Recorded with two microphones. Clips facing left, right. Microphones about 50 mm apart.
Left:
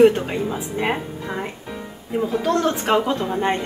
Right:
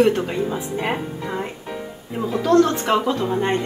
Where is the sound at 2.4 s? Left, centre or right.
Left.